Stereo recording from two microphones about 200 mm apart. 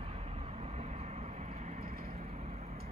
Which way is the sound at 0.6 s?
35° right (ahead or behind).